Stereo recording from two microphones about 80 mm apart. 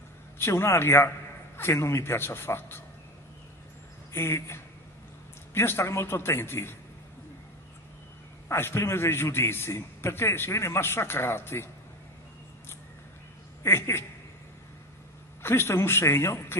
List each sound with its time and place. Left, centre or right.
0.4 s a man's voice: left
4.1 s a man's voice: left
8.5 s a man's voice: left
13.6 s a woman's voice: left
15.4 s a man's voice: left